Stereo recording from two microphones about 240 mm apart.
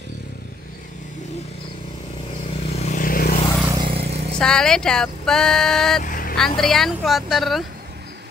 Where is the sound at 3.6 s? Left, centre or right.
Centre.